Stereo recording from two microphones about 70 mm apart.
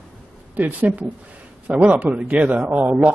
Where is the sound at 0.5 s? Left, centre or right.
Right.